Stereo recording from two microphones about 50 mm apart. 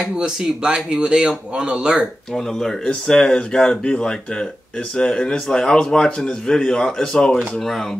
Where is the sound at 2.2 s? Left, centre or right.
Centre.